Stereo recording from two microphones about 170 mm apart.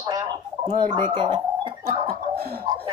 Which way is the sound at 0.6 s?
25° right (ahead or behind).